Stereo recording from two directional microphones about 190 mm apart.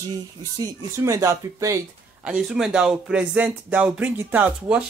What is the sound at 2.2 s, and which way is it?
Speech, 5° right (ahead or behind).